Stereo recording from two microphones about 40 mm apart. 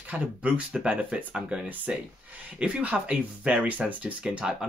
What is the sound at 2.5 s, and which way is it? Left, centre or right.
Speech, right.